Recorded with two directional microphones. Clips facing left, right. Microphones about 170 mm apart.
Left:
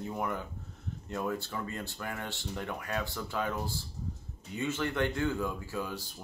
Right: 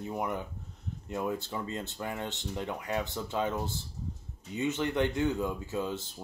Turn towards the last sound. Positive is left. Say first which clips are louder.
# right 3 dB
turn(degrees=-25)  # may be behind; listen again after turning